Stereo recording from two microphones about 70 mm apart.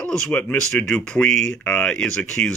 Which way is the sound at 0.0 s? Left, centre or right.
Centre.